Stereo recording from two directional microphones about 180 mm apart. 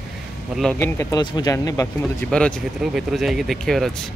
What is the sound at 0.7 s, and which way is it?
Speech, 15° left (ahead or behind).